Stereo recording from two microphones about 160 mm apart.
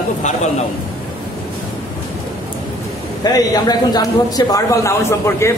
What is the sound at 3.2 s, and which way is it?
A man's voice, 25° left (ahead or behind).